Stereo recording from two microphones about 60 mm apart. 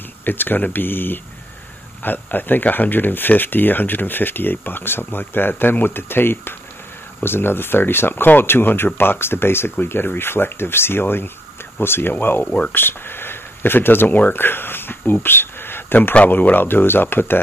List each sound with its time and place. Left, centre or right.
0.2 s speech: left
12.4 s speech: left
12.7 s speech: left